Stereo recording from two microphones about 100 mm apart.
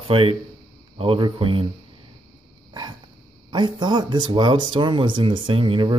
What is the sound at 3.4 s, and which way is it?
Speech, 50° right (ahead or behind).